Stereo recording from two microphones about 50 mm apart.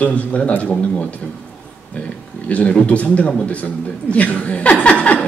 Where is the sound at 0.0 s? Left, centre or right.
Left.